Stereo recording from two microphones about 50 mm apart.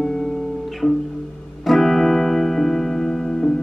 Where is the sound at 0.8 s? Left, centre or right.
Centre.